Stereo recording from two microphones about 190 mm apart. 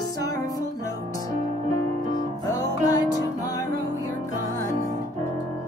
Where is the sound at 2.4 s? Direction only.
20° left (ahead or behind).